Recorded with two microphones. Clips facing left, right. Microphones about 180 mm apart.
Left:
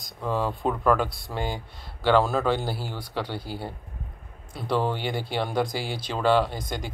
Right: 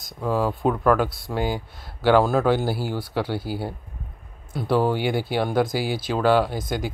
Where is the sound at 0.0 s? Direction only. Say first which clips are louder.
Right 4 dB; 5° right (ahead or behind).